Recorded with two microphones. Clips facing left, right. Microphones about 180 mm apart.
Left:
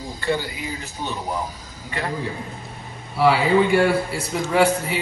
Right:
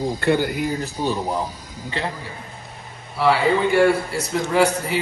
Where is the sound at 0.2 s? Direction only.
55° right (ahead or behind).